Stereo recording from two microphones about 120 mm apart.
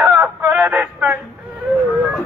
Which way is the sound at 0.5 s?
15° right (ahead or behind).